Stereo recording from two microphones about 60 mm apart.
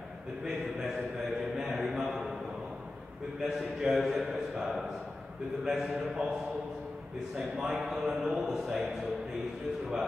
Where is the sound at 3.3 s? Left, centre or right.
Centre.